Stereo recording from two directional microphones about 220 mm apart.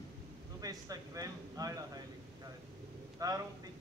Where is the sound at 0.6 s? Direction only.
15° right (ahead or behind).